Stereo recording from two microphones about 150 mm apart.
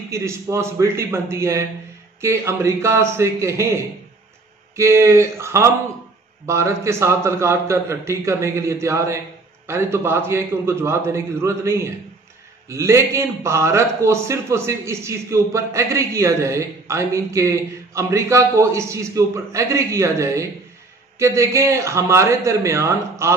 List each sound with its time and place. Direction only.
0.1 s a man's voice: 20° right (ahead or behind)